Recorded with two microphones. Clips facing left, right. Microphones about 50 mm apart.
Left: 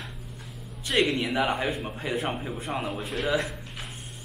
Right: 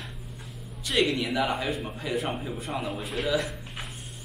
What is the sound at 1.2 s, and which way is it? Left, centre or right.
Speech, left.